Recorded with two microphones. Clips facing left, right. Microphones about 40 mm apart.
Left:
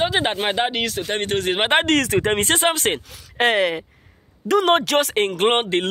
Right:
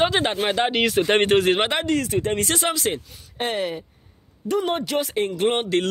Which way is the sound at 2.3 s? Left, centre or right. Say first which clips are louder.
Left 4 dB; left.